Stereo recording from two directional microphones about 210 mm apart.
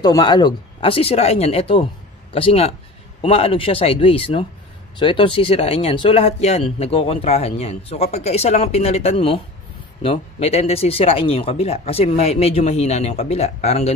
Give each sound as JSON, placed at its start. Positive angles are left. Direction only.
{"t": 0.0, "sound": "speech", "side_deg": 20}